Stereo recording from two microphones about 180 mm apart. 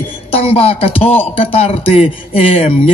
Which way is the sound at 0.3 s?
35° left (ahead or behind).